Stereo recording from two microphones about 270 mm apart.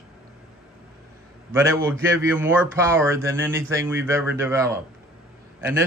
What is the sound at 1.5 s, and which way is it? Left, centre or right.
A man's voice, centre.